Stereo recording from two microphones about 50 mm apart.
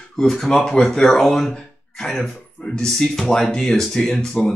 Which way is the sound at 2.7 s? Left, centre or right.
Centre.